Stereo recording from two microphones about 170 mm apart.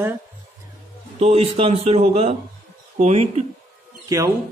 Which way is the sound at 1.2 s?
35° right (ahead or behind).